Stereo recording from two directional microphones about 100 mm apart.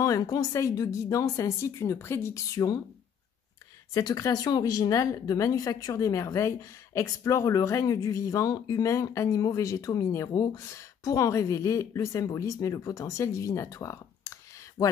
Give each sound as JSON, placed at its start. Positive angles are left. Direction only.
{"t": 0.0, "sound": "speech", "side_deg": 35}
{"t": 3.9, "sound": "speech", "side_deg": 35}